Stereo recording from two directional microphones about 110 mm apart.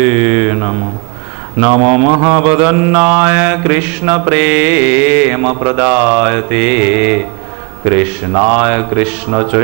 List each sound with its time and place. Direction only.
0.0 s mantra: 20° right (ahead or behind)